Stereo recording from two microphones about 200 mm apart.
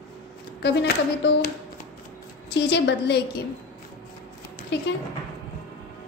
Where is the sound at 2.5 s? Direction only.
60° left (ahead or behind).